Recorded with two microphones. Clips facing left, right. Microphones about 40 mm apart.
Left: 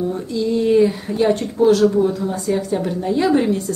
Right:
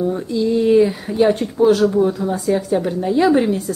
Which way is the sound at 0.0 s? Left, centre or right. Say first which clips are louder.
Right 2 dB; centre.